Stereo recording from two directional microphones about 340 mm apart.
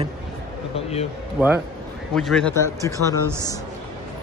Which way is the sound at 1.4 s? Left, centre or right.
Centre.